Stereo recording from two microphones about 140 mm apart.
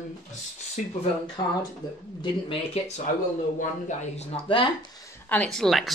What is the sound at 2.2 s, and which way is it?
Speech, 40° left (ahead or behind).